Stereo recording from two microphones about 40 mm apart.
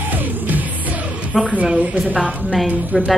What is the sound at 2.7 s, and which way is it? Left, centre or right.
Speech, right.